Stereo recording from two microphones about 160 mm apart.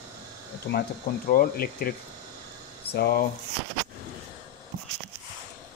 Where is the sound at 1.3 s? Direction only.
65° left (ahead or behind).